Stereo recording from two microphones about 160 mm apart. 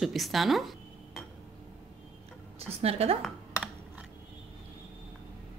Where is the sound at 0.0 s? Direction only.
Centre (ahead or behind).